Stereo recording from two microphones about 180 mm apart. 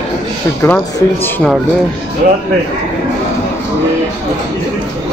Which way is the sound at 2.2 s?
50° right (ahead or behind).